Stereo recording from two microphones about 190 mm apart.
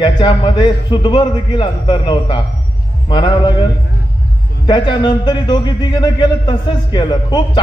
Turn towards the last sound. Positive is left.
turn(degrees=25)  # may be behind; listen again after turning